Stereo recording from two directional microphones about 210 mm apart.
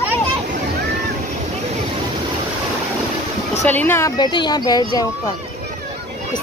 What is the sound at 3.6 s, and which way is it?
Speech, 10° left (ahead or behind).